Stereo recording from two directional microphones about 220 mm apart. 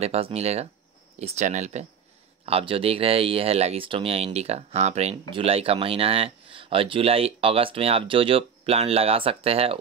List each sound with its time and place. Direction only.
0.0 s speech: 30° right (ahead or behind)